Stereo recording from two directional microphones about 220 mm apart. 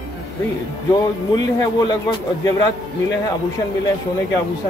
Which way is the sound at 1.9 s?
20° left (ahead or behind).